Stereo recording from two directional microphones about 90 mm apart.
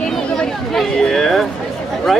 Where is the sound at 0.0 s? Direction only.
5° left (ahead or behind).